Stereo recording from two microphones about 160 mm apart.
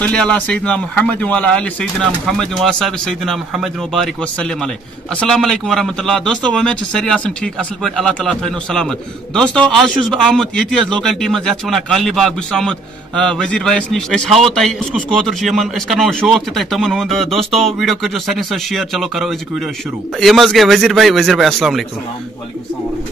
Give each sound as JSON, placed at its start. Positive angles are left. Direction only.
{"t": 0.0, "sound": "a man's voice", "side_deg": 5}
{"t": 17.3, "sound": "speech", "side_deg": -35}
{"t": 17.6, "sound": "a man's voice", "side_deg": 0}